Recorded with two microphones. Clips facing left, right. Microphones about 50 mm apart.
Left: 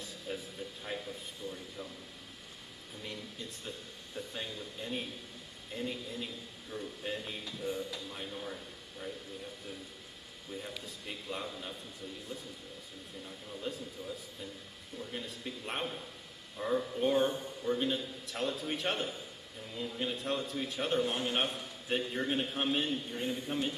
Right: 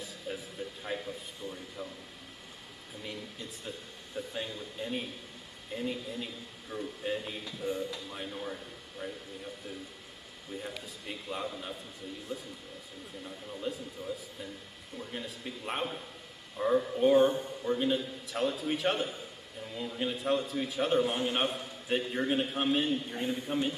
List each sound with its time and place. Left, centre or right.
0.3 s music: centre
0.8 s a sound: centre
3.0 s a sound: centre
4.6 s a man's voice: centre
11.1 s a man's voice: centre
13.2 s speech: centre
17.2 s a man's voice: right
17.6 s a man's voice: centre
23.0 s speech: centre